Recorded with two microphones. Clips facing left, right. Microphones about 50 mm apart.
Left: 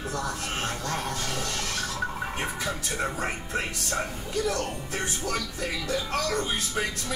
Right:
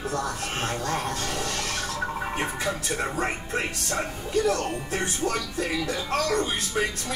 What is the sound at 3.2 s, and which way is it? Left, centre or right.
Speech, right.